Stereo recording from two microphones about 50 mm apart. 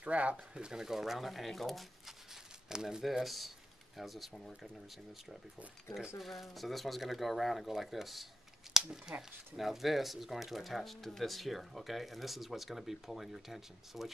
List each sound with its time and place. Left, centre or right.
0.0 s speech: right; by 2.1 s centre
2.7 s speech: centre
5.9 s speech: centre
9.1 s speech: right
9.6 s speech: centre